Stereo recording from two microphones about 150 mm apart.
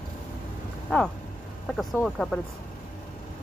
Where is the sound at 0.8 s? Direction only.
5° left (ahead or behind).